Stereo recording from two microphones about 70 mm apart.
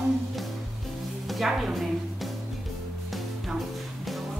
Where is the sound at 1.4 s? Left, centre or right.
Centre.